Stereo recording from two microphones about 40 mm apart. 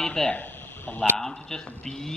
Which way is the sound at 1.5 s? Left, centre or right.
Centre.